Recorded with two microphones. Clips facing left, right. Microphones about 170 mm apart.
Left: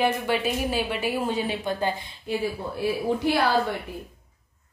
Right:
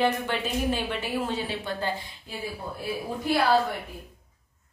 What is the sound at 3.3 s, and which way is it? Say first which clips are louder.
Speech: even; 80° left.